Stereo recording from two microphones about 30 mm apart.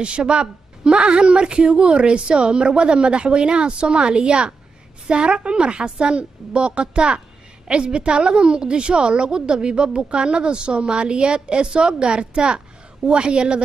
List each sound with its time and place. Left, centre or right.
0.0 s a woman's voice: right